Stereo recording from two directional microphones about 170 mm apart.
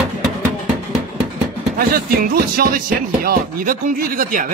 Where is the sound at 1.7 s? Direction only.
60° right (ahead or behind).